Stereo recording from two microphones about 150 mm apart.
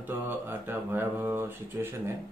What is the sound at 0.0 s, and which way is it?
Speech, 15° right (ahead or behind).